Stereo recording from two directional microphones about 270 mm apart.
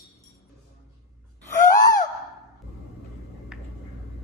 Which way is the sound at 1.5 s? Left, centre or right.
Centre.